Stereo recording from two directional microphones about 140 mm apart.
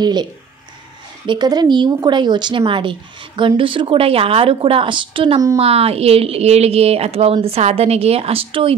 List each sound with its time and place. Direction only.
0.0 s speech: 30° right (ahead or behind)